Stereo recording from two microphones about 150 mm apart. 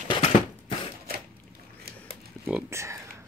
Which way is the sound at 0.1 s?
35° left (ahead or behind).